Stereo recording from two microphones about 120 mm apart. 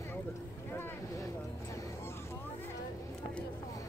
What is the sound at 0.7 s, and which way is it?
Boat, 20° left (ahead or behind).